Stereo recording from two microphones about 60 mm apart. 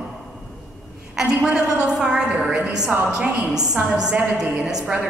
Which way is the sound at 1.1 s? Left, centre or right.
Centre.